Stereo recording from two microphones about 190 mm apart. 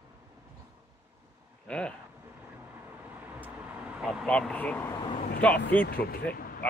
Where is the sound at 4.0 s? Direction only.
Centre (ahead or behind).